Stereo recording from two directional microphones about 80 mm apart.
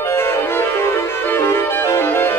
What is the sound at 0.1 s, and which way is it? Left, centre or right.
Music, left.